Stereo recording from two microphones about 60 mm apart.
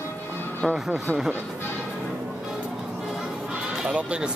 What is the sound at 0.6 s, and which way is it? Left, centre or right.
Speech, centre.